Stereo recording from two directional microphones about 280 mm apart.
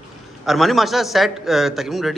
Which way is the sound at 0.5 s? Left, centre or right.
Centre.